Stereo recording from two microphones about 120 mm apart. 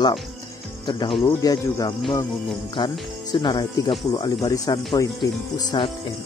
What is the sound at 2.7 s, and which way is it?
Speech, 40° left (ahead or behind).